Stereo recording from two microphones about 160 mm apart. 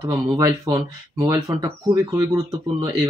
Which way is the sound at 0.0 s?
20° right (ahead or behind).